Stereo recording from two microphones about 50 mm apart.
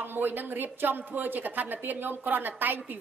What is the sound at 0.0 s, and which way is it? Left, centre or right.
A woman's voice, right.